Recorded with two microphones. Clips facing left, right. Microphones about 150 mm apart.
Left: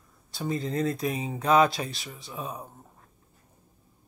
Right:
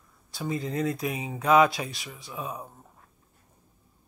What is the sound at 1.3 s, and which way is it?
Speech, 30° left (ahead or behind).